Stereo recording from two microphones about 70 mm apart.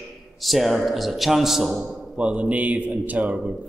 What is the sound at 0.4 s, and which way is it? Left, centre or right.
Speech, centre.